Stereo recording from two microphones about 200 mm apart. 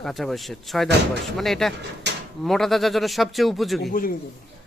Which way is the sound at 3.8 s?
45° left (ahead or behind).